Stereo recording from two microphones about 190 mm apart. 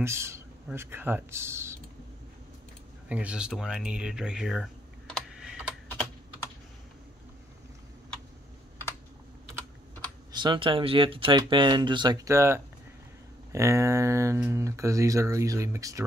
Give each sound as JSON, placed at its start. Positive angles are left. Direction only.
{"t": 0.0, "sound": "speech", "side_deg": -15}
{"t": 3.1, "sound": "speech", "side_deg": -5}
{"t": 10.3, "sound": "speech", "side_deg": -25}